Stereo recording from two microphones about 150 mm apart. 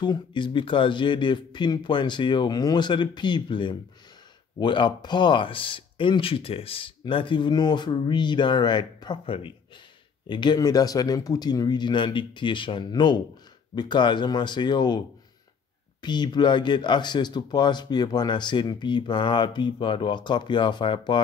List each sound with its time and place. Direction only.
0.0 s speech: 30° left (ahead or behind)